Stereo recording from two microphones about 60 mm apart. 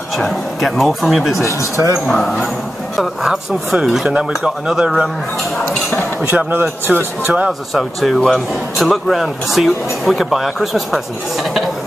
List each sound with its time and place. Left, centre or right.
0.2 s speech: centre
1.4 s speech: left
2.0 s speech: centre
6.5 s a man's voice: right
7.7 s speech: centre